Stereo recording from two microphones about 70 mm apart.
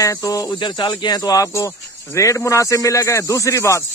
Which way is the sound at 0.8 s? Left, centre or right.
Left.